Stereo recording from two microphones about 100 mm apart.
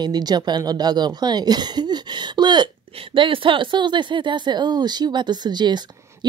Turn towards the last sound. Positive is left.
turn(degrees=-45)  # may be behind; listen again after turning